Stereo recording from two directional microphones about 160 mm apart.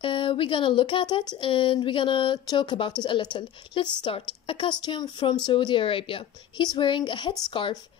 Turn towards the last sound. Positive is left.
turn(degrees=30)  # may be behind; listen again after turning